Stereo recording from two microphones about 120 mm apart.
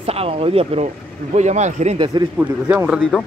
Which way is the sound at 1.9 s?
45° right (ahead or behind).